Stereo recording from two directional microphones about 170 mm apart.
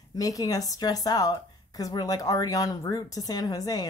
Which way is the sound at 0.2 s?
20° left (ahead or behind).